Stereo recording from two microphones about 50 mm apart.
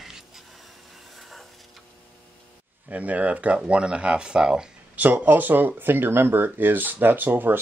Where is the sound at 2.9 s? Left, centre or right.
Right.